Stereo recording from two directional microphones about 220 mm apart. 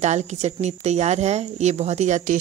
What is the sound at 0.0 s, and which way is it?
Speech, 30° right (ahead or behind).